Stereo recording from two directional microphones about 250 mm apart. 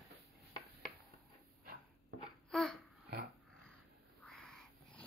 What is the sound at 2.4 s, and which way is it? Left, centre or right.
Babbling, centre.